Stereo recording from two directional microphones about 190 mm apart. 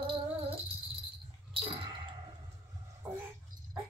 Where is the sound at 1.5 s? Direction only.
25° right (ahead or behind).